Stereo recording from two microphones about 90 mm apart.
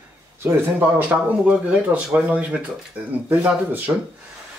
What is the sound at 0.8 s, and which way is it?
Speech, 15° right (ahead or behind).